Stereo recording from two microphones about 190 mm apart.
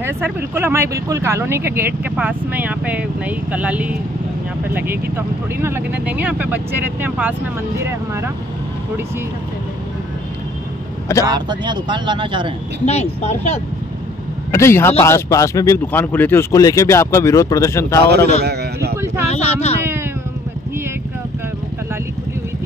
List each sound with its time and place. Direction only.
0.0 s speech: 10° right (ahead or behind)
11.2 s speech: 25° right (ahead or behind)
12.8 s speech: 35° left (ahead or behind)
14.5 s speech: 15° left (ahead or behind)
18.4 s a sound: 60° right (ahead or behind)
19.2 s speech: 35° left (ahead or behind)